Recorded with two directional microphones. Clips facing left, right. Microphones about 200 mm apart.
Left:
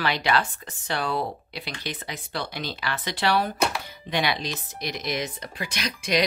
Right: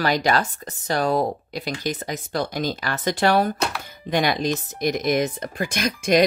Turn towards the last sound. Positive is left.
turn(degrees=-50)  # may be behind; listen again after turning